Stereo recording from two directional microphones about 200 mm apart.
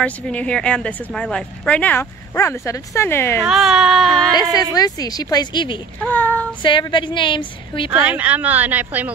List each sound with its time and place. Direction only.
0.0 s a woman's voice: 5° left (ahead or behind)
3.4 s speech: centre (ahead or behind)
4.4 s a woman's voice: 20° left (ahead or behind)
5.9 s a woman's voice: 10° left (ahead or behind)
6.6 s a woman's voice: 25° left (ahead or behind)
7.9 s speech: 5° right (ahead or behind)